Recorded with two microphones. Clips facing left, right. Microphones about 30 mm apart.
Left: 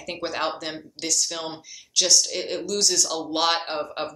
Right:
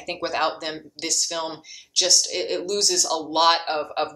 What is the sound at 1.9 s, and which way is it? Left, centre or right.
Speech, right.